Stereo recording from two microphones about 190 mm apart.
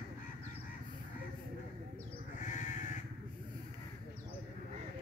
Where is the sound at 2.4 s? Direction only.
40° left (ahead or behind).